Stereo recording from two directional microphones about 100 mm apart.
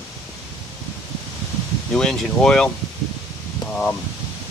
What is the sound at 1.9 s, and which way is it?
Speech, 5° left (ahead or behind).